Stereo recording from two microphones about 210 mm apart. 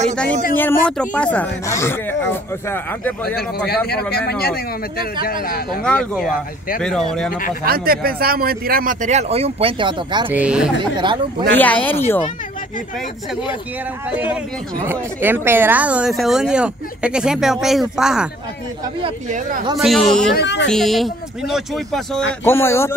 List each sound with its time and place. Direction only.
0.1 s speech: 5° left (ahead or behind)
3.3 s speech: 50° left (ahead or behind)
5.9 s speech: 5° left (ahead or behind)
7.6 s a man's voice: 45° right (ahead or behind); by 10.3 s 25° right (ahead or behind)
10.3 s speech: 5° right (ahead or behind)
11.0 s speech: 20° right (ahead or behind)
11.5 s speech: 5° left (ahead or behind)
14.9 s speech: 10° right (ahead or behind)
19.8 s speech: centre (ahead or behind)
20.3 s speech: 55° left (ahead or behind)
20.6 s speech: centre (ahead or behind)
22.4 s speech: 10° left (ahead or behind)